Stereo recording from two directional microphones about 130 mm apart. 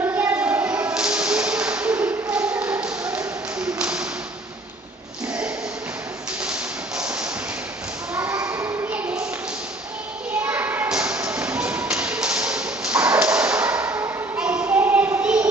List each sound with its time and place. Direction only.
0.0 s a sound: 15° right (ahead or behind)
0.9 s music: 5° right (ahead or behind)
3.5 s tap: 5° right (ahead or behind)
6.4 s tap: 10° right (ahead or behind)
8.2 s a sound: 25° right (ahead or behind)
8.5 s a sound: 15° right (ahead or behind)
10.4 s children playing: 15° right (ahead or behind)
10.9 s tap: 10° right (ahead or behind)
14.4 s child singing: 10° right (ahead or behind)